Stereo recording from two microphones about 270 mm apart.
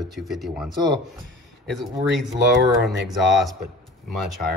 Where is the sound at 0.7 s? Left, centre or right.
Centre.